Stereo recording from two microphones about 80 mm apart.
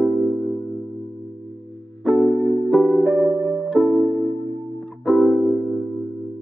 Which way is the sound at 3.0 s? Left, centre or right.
Centre.